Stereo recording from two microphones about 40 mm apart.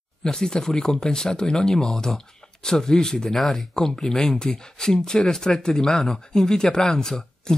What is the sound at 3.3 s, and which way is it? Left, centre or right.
Speech, centre.